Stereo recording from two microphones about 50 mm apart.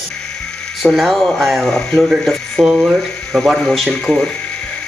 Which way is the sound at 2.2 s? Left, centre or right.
Centre.